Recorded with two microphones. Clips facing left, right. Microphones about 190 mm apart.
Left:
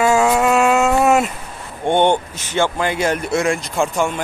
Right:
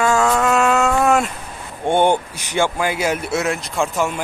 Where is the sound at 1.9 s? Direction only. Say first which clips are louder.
Left 1 dB; 5° right (ahead or behind).